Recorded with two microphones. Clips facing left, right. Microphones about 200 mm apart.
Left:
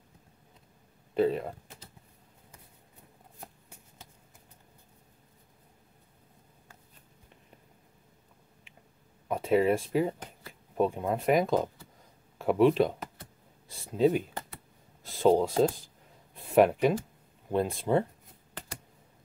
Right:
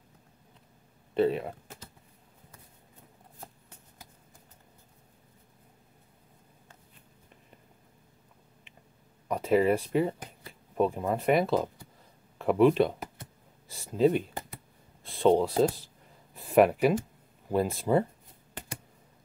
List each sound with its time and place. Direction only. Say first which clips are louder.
1.1 s speech: right 1 dB; centre (ahead or behind)
9.3 s speech: right 1 dB; centre (ahead or behind)
13.7 s a sound: right 1 dB; centre (ahead or behind)
15.0 s speech: even; centre (ahead or behind)